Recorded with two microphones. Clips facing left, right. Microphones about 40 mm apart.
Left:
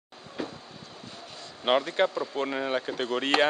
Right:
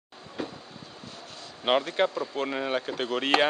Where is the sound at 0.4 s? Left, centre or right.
Centre.